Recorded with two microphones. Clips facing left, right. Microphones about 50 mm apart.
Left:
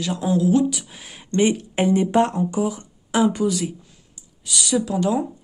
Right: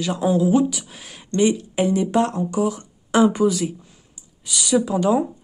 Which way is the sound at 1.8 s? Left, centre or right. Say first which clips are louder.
Left 1 dB; left.